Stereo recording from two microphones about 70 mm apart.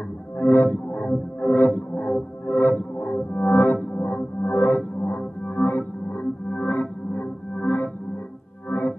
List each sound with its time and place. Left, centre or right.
0.4 s music: left